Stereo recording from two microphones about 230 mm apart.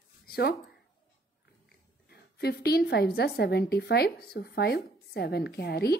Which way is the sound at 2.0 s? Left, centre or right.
Left.